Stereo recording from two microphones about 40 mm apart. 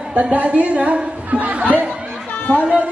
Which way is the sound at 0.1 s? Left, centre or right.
Right.